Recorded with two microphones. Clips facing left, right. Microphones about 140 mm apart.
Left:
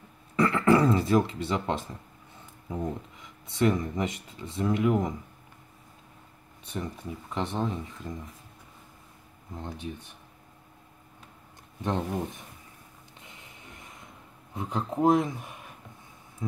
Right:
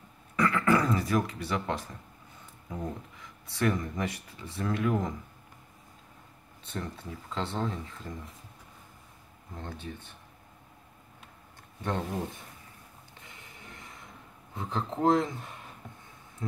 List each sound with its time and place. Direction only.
0.4 s speech: 25° left (ahead or behind)
6.6 s speech: 15° left (ahead or behind)
9.6 s speech: 15° left (ahead or behind)
11.8 s speech: 20° left (ahead or behind)
14.5 s speech: 15° left (ahead or behind)